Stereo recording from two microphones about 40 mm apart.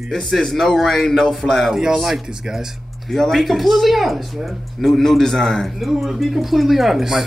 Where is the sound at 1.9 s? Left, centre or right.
Centre.